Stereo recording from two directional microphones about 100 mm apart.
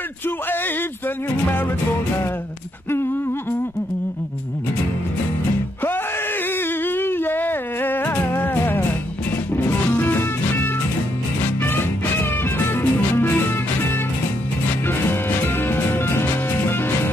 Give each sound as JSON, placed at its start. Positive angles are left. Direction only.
{"t": 6.8, "sound": "music", "side_deg": 20}
{"t": 14.9, "sound": "music", "side_deg": 20}